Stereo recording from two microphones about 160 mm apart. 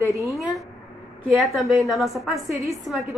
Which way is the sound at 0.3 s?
Centre (ahead or behind).